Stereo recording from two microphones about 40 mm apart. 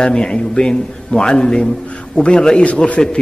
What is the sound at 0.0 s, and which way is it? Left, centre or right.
A man's voice, left.